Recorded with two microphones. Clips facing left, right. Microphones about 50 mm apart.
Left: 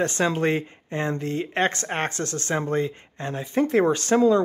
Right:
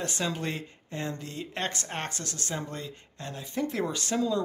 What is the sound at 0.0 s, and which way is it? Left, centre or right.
Speech, left.